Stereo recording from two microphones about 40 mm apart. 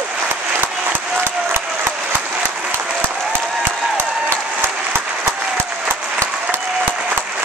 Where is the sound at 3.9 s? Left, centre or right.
Right.